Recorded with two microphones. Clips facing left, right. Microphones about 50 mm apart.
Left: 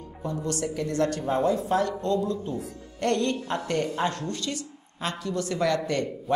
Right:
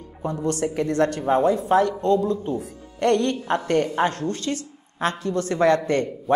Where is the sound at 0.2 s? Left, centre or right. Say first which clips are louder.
Right 5 dB; right.